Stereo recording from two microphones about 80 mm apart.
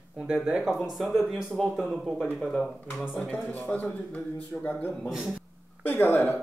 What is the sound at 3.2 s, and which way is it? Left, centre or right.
Speech, centre.